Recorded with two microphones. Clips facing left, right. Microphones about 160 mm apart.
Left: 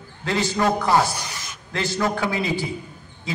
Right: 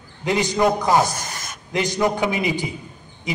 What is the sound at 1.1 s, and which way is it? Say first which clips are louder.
Speech: right 1 dB; 45° right (ahead or behind).